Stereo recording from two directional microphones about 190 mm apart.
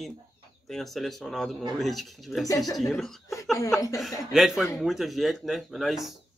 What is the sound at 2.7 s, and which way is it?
Speech, centre (ahead or behind).